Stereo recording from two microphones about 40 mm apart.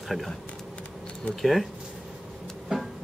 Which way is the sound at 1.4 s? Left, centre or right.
Centre.